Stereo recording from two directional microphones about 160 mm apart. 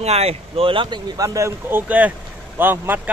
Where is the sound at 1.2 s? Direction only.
20° right (ahead or behind).